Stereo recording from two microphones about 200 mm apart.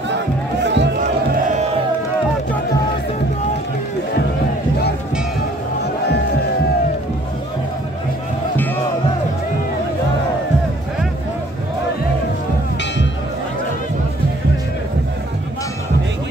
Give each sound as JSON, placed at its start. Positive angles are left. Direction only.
{"t": 0.7, "sound": "music", "side_deg": -60}